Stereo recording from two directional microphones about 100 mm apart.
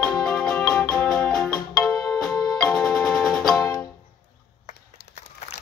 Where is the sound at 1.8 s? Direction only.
40° left (ahead or behind).